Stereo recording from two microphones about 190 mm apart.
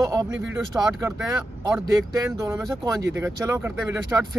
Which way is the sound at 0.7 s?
15° right (ahead or behind).